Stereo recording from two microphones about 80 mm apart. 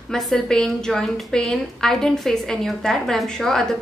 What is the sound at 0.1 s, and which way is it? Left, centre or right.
A woman's voice, centre.